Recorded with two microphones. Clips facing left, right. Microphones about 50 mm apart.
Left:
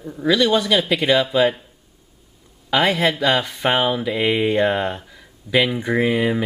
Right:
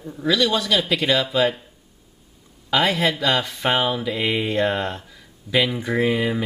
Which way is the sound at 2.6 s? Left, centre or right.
Centre.